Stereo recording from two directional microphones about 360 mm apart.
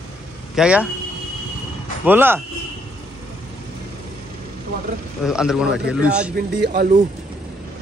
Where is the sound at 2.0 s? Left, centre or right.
Centre.